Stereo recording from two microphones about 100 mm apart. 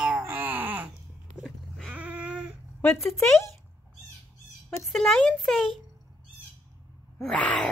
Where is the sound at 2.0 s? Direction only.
15° right (ahead or behind).